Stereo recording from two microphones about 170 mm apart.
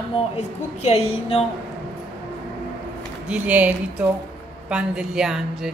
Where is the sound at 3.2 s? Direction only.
10° right (ahead or behind).